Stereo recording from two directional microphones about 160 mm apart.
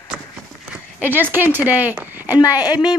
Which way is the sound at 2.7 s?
25° left (ahead or behind).